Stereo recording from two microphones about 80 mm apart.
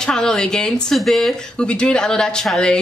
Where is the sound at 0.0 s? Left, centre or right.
Centre.